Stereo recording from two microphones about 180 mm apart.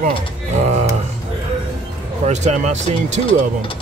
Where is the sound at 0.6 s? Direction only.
40° right (ahead or behind).